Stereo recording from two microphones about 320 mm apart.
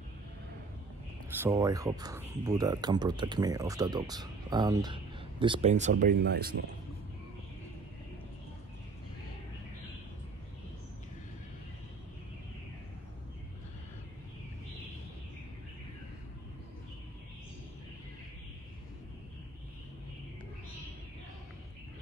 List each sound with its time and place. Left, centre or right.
1.3 s speech: centre; by 6.5 s right